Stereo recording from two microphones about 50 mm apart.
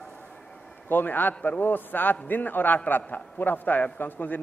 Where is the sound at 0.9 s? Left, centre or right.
Left.